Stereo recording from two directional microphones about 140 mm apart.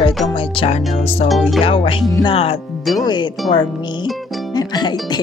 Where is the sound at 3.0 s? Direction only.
30° left (ahead or behind).